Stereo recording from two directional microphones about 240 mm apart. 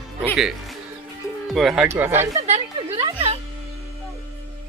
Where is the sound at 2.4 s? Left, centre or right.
Right.